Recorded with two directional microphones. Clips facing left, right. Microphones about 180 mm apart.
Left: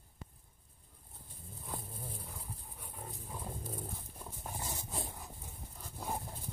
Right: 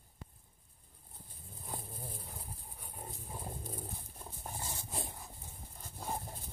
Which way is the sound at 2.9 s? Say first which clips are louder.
Even; 30° right (ahead or behind).